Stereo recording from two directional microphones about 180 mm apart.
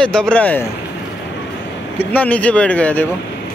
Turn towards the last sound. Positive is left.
turn(degrees=10)  # may be behind; listen again after turning